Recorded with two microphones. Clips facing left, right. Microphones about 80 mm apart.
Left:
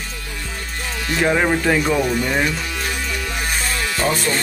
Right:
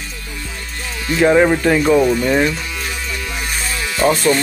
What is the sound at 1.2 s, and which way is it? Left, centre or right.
Speech, centre.